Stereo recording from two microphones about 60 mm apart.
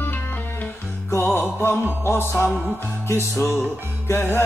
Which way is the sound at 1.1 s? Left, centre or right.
Left.